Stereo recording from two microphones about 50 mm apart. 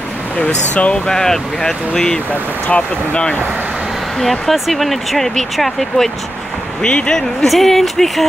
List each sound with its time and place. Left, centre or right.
0.4 s speech: left
1.0 s speech: centre
4.2 s speech: centre
6.8 s speech: centre
7.4 s speech: centre